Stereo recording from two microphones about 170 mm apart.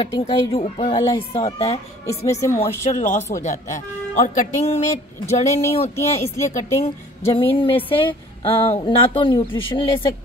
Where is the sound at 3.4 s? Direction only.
45° left (ahead or behind).